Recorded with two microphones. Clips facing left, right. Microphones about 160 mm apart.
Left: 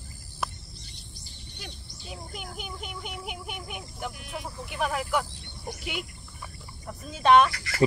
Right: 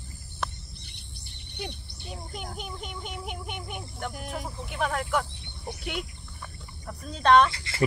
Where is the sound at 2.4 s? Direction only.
5° left (ahead or behind).